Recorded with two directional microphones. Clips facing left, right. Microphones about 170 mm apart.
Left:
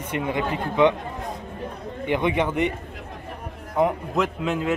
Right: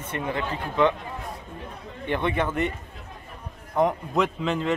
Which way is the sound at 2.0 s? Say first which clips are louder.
Left 3 dB; 15° left (ahead or behind).